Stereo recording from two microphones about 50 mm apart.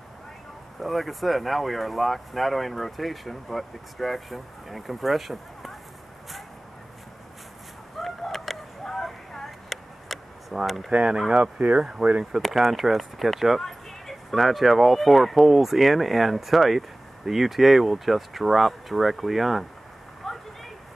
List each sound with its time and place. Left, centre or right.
0.7 s speech: centre
8.0 s a sound: centre
10.5 s speech: centre
10.9 s speech: centre
11.5 s speech: right
12.4 s speech: centre
20.2 s a sound: centre